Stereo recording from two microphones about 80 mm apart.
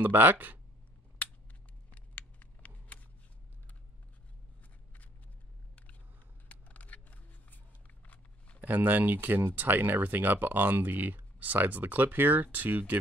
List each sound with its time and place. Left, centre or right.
0.0 s speech: right
1.9 s a sound: centre
6.5 s shuffling cards: centre
8.5 s speech: right